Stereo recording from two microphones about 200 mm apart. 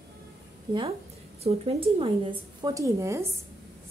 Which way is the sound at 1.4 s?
30° right (ahead or behind).